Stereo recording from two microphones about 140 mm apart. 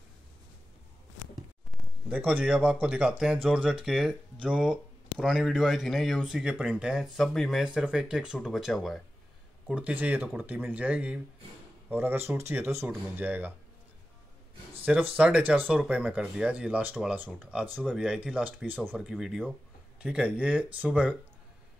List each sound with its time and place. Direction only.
2.0 s speech: 10° right (ahead or behind)
15.1 s speech: 10° right (ahead or behind)